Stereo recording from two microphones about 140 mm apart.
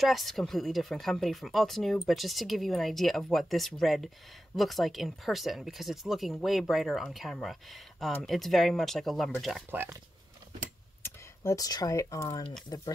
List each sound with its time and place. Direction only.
0.0 s speech: centre (ahead or behind)
9.7 s speech: 15° right (ahead or behind)
11.0 s speech: 20° left (ahead or behind)